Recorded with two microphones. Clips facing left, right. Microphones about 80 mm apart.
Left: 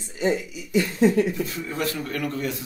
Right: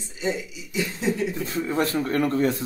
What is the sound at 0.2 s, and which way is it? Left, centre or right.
Speech, left.